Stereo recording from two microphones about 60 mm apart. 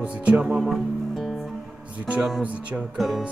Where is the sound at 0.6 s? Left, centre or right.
Centre.